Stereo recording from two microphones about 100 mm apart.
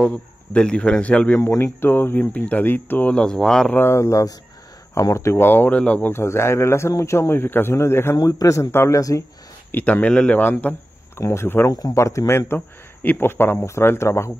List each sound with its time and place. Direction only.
0.0 s speech: 10° left (ahead or behind)
1.4 s speech: 25° left (ahead or behind); by 3.7 s 5° left (ahead or behind)
3.7 s speech: 25° left (ahead or behind)
8.2 s a man's voice: 35° left (ahead or behind)
9.7 s a man's voice: 20° left (ahead or behind)